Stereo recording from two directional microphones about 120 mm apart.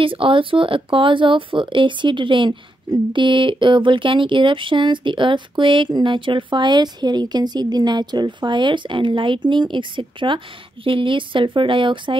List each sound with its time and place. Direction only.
0.0 s speech: 45° right (ahead or behind)